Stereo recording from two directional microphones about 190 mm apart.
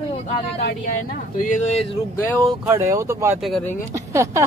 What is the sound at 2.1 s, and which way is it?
Speech, 10° left (ahead or behind).